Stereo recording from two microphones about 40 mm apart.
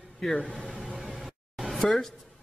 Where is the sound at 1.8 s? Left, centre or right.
Centre.